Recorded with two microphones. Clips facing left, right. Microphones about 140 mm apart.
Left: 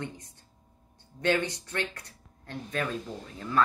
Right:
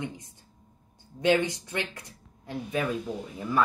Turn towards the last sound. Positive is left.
turn(degrees=-10)  # may be behind; listen again after turning